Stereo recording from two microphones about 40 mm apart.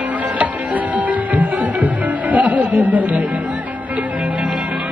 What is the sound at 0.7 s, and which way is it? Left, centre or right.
Music, right.